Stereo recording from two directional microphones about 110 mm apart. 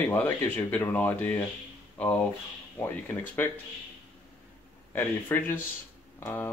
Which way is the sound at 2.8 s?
15° left (ahead or behind).